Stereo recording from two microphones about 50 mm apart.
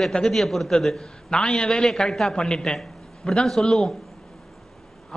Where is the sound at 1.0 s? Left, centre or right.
Centre.